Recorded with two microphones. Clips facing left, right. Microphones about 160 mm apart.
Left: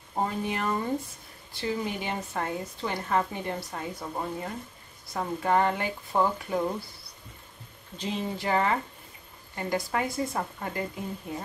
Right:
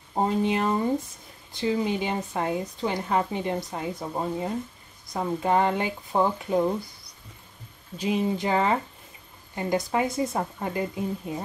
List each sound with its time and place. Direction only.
0.1 s speech: 20° right (ahead or behind)
8.0 s speech: 15° right (ahead or behind)